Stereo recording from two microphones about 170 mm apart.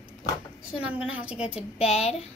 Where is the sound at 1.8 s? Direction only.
35° left (ahead or behind).